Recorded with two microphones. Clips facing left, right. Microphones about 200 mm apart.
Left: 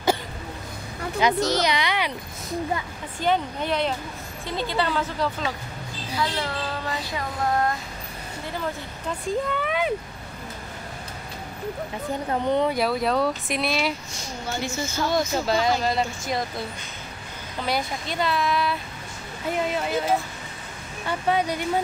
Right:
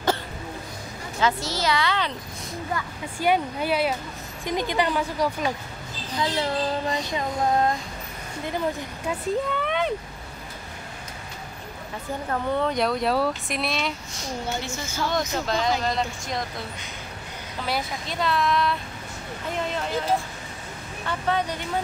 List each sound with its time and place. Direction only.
1.2 s a child's voice: 20° left (ahead or behind)
3.2 s speech: 10° right (ahead or behind)
6.1 s child singing: 20° right (ahead or behind)
9.5 s a sound: 5° left (ahead or behind)
12.3 s speech: 20° left (ahead or behind)
12.7 s speech: 5° left (ahead or behind)
15.0 s speech: 5° left (ahead or behind)
17.6 s a child's voice: centre (ahead or behind)